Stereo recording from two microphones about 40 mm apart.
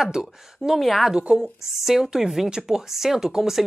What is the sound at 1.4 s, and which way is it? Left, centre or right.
Speech, centre.